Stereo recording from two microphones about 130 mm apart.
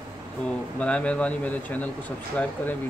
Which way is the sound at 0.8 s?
10° left (ahead or behind).